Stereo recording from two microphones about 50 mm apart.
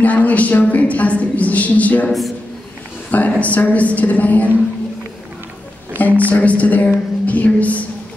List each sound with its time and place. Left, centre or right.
0.0 s a woman's voice: left
3.1 s a woman's voice: left
5.9 s a woman's voice: left